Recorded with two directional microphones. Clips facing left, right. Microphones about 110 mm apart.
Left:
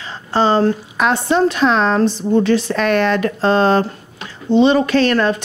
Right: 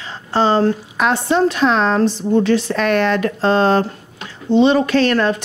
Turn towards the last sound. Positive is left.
turn(degrees=25)  # may be behind; listen again after turning